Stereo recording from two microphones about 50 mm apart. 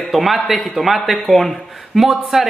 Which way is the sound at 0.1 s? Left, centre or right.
Centre.